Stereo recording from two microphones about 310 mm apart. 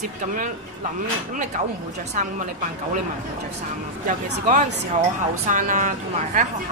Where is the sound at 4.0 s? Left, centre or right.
Right.